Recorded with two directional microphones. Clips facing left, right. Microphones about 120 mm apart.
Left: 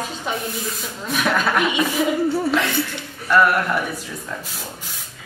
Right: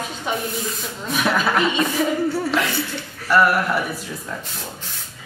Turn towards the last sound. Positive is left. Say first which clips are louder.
# even
turn(degrees=-5)  # may be behind; listen again after turning